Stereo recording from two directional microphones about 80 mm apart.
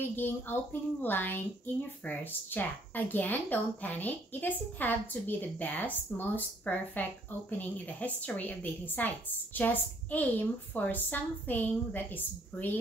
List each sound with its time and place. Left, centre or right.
0.1 s speech: left